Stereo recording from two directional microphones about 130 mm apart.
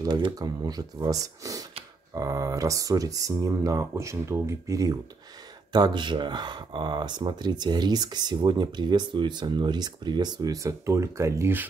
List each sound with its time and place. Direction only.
0.0 s speech: 30° right (ahead or behind)